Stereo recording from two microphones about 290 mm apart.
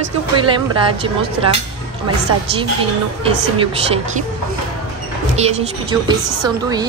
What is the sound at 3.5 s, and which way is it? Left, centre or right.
Speech, centre.